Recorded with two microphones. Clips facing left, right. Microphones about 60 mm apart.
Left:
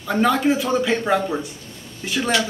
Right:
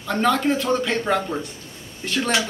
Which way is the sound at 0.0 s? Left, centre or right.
Centre.